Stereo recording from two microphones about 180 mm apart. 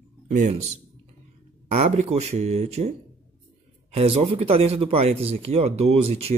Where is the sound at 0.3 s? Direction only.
45° right (ahead or behind).